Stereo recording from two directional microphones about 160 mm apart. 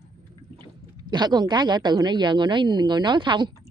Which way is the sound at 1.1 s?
25° right (ahead or behind).